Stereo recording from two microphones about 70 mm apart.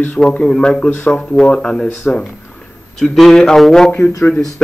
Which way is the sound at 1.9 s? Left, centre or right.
Left.